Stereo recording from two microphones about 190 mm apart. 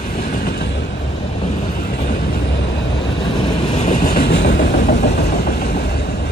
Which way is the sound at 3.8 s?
45° left (ahead or behind).